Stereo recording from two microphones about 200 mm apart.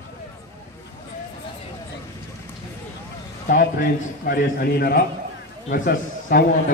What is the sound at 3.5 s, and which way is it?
A man's voice, 45° left (ahead or behind).